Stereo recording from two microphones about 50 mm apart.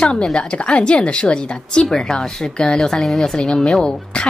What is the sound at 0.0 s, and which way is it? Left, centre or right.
A woman's voice, centre.